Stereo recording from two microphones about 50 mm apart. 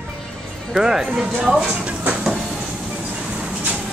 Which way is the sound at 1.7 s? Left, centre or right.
Right.